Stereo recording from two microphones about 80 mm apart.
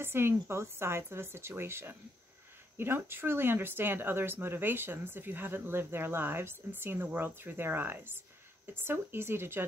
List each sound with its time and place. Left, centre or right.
0.0 s a woman's voice: right